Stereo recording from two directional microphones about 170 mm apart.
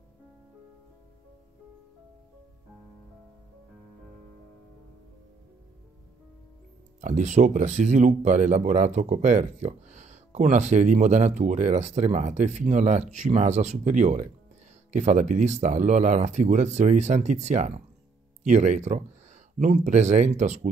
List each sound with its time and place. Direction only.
7.0 s speech: 45° right (ahead or behind)